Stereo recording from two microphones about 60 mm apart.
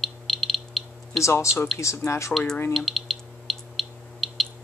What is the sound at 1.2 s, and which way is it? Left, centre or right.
Speech, left.